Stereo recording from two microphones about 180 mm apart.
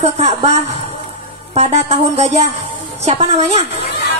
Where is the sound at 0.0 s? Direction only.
35° right (ahead or behind).